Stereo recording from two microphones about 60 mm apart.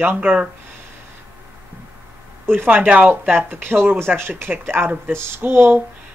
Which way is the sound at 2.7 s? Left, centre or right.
Right.